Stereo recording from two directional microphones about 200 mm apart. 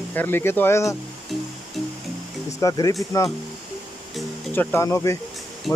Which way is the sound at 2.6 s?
15° left (ahead or behind).